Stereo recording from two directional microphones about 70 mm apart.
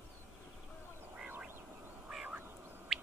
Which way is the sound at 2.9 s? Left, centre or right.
Centre.